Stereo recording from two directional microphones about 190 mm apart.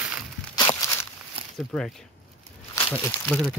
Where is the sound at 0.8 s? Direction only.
15° left (ahead or behind).